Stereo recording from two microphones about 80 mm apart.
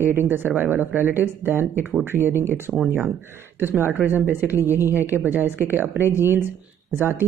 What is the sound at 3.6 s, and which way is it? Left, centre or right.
Speech, right.